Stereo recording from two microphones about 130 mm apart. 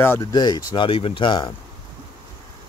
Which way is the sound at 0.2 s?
30° left (ahead or behind).